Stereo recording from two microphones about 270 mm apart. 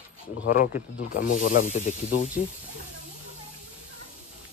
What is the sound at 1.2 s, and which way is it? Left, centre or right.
Snake, left.